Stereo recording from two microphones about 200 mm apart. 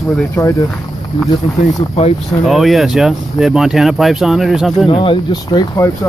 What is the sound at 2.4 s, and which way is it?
Speech, centre (ahead or behind).